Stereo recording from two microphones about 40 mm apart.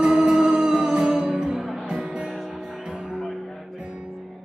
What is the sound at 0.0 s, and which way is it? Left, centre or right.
Music, centre.